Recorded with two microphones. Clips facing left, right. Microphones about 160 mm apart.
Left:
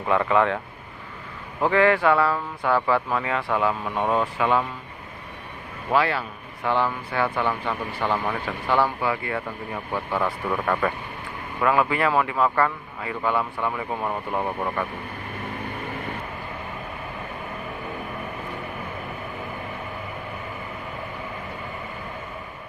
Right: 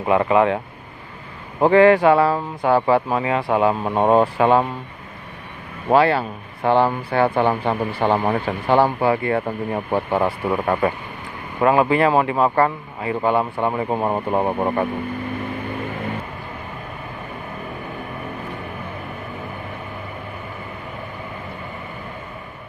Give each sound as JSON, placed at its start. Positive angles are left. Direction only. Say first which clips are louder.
{"t": 0.0, "sound": "speech", "louder": "right 4 dB", "side_deg": -15}
{"t": 1.6, "sound": "a man's voice", "louder": "right 7 dB", "side_deg": -25}
{"t": 5.9, "sound": "a man's voice", "louder": "right 7 dB", "side_deg": -30}